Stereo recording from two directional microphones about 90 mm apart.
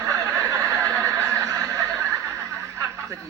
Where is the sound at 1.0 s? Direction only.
40° right (ahead or behind).